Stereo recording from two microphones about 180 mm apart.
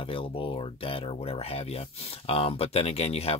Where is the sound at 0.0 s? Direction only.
30° left (ahead or behind).